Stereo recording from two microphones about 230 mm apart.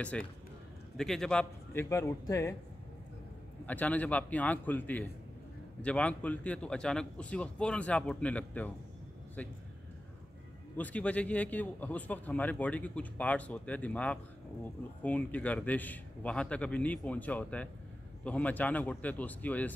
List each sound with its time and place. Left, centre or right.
0.1 s a man's voice: centre
3.6 s a man's voice: centre
10.8 s a man's voice: centre